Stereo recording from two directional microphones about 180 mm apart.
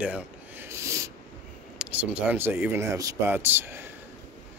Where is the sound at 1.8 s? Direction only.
10° right (ahead or behind).